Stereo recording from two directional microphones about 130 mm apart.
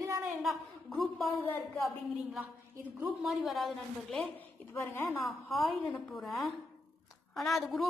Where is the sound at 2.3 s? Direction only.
15° right (ahead or behind).